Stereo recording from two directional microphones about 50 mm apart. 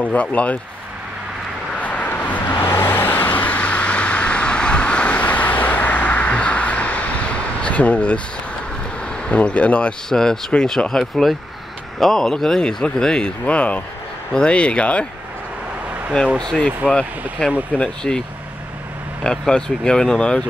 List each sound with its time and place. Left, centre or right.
0.0 s a man's voice: left
1.8 s vehicle: left
2.5 s vehicle: left
9.0 s speech: centre
10.0 s a man's voice: centre
16.3 s a man's voice: centre
19.2 s speech: centre